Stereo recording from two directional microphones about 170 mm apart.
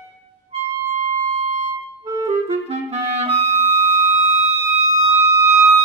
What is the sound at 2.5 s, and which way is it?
Clarinet, 40° right (ahead or behind).